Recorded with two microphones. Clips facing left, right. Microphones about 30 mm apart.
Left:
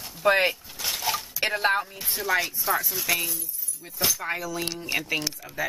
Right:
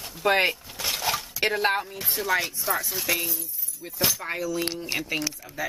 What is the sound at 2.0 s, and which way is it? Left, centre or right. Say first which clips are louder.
Speech: even; centre.